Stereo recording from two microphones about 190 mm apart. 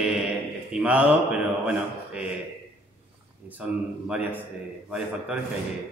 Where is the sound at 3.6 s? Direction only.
5° right (ahead or behind).